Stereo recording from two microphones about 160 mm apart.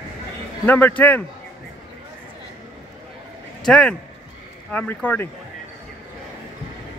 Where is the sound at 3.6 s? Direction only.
5° left (ahead or behind).